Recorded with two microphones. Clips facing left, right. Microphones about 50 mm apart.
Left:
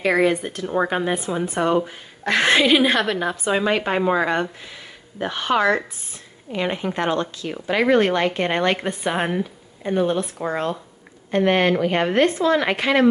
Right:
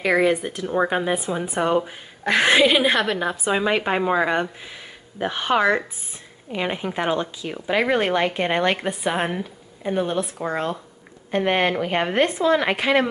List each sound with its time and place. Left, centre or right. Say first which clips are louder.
0.0 s speech: even; centre
5.3 s speech: even; centre
6.5 s speech: left 1 dB; centre